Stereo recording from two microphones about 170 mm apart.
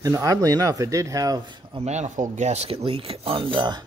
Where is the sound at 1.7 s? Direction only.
40° right (ahead or behind).